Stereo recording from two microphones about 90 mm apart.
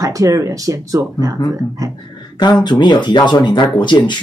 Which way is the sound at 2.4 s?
55° left (ahead or behind).